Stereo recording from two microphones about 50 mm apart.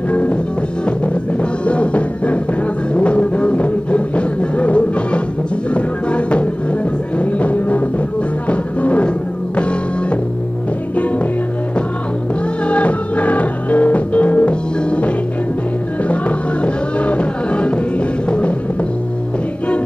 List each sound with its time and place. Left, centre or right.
0.1 s music: left
1.7 s music: left
12.6 s music: left